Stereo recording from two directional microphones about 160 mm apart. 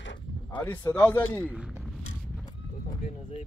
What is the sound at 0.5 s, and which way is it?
Speech, 10° left (ahead or behind).